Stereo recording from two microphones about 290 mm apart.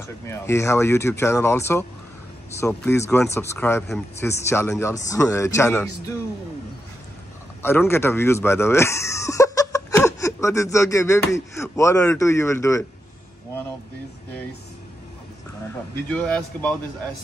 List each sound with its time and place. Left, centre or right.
0.3 s speech: centre
7.6 s speech: centre
15.6 s speech: centre